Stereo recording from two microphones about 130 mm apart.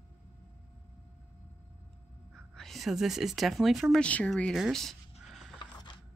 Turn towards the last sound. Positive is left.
turn(degrees=0)  # may be behind; listen again after turning